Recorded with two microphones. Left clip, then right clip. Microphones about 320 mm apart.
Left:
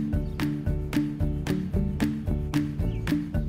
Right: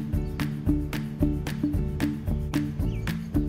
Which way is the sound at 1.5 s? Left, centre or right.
Centre.